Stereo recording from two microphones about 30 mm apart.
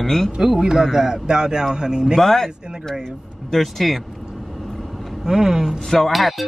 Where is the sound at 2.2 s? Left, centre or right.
Centre.